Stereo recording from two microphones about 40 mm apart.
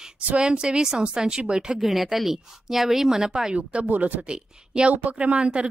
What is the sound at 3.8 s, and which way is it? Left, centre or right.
Speech, right.